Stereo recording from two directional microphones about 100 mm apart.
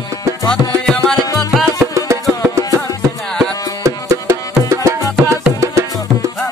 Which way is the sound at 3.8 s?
30° right (ahead or behind).